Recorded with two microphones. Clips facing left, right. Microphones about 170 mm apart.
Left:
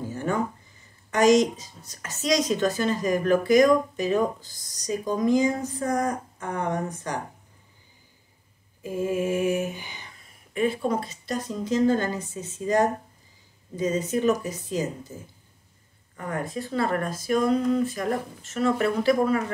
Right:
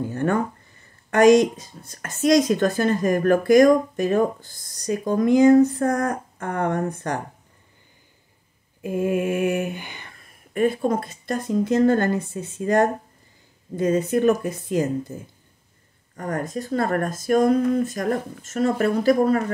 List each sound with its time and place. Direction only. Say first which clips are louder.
0.1 s a woman's voice: right 3 dB; 60° right (ahead or behind)
8.8 s a woman's voice: right 3 dB; 60° right (ahead or behind)
16.2 s speech: right 3 dB; 45° right (ahead or behind)